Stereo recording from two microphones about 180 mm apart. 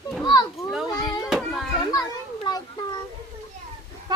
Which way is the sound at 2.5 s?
25° left (ahead or behind).